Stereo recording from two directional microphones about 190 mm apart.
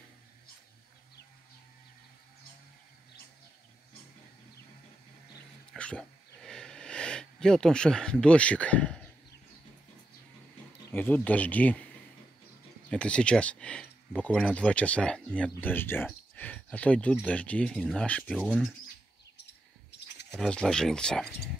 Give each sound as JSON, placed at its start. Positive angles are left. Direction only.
{"t": 5.7, "sound": "a sound", "side_deg": 5}
{"t": 10.9, "sound": "speech", "side_deg": 10}
{"t": 12.9, "sound": "speech", "side_deg": 5}
{"t": 19.9, "sound": "bird", "side_deg": 65}
{"t": 20.3, "sound": "speech", "side_deg": 5}